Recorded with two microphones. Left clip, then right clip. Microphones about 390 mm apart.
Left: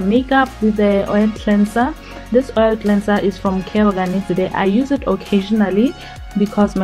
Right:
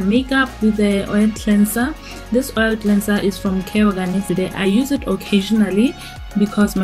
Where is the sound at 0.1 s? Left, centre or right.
Centre.